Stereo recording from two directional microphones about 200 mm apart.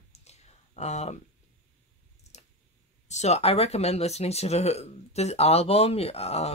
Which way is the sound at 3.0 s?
35° left (ahead or behind).